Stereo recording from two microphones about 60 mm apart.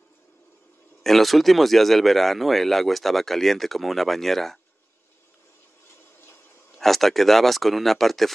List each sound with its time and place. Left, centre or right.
1.0 s speech: centre
5.9 s a sound: left
6.8 s speech: centre